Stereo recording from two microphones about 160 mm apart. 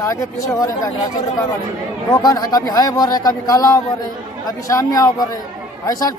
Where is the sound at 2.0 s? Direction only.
20° left (ahead or behind).